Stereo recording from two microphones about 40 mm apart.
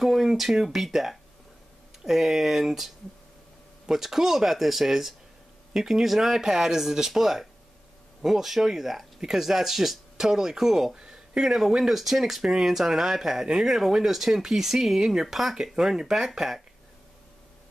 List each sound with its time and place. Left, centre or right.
0.0 s speech: centre
11.0 s a sound: centre
11.4 s speech: centre